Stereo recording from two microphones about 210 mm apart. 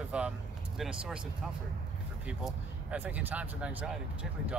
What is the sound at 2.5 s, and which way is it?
Speech, 5° right (ahead or behind).